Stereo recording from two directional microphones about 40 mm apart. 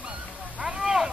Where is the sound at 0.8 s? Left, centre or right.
Centre.